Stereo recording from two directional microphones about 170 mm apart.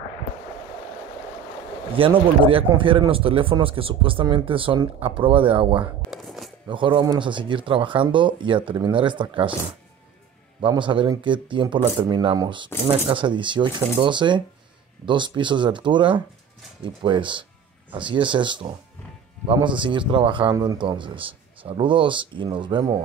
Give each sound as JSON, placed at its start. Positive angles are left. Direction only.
{"t": 2.0, "sound": "speech", "side_deg": -30}
{"t": 6.2, "sound": "a sound", "side_deg": 0}
{"t": 6.7, "sound": "speech", "side_deg": -30}
{"t": 10.6, "sound": "speech", "side_deg": -30}